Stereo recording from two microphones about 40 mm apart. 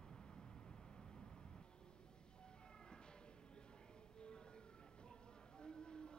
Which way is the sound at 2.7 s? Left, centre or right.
Left.